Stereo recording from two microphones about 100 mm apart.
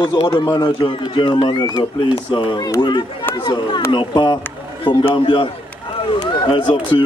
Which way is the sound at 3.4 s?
50° left (ahead or behind).